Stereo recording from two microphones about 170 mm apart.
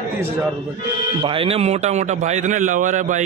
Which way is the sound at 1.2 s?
35° right (ahead or behind).